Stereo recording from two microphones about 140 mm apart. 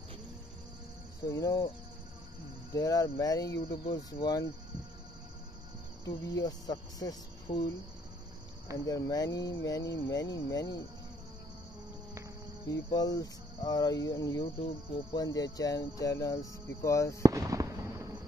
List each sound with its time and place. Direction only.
1.2 s speech: 25° left (ahead or behind)
2.7 s speech: 25° left (ahead or behind)
6.0 s speech: 25° left (ahead or behind)
8.7 s speech: 25° left (ahead or behind)
12.6 s speech: 25° left (ahead or behind)
17.2 s fireworks: 25° right (ahead or behind)